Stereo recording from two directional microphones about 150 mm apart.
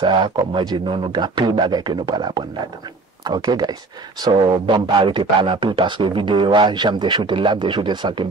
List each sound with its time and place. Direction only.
0.0 s speech: 30° right (ahead or behind)